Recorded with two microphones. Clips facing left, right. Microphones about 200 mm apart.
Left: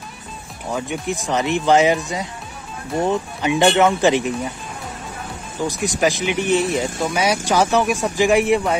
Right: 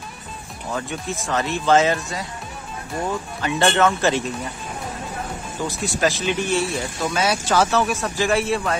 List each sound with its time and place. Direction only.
0.7 s speech: 15° left (ahead or behind)
5.6 s speech: 15° left (ahead or behind)